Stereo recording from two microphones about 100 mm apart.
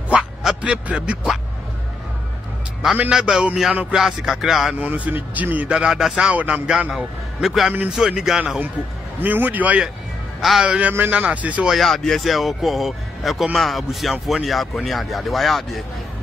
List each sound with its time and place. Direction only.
0.1 s speech: 5° right (ahead or behind)
3.0 s speech: 5° right (ahead or behind)
4.7 s a man's voice: 15° right (ahead or behind)
10.4 s a man's voice: 5° right (ahead or behind)
11.7 s speech: centre (ahead or behind)